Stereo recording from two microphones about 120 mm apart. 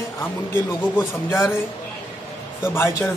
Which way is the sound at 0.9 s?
20° left (ahead or behind).